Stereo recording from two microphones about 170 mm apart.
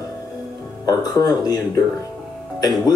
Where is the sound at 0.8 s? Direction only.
20° left (ahead or behind).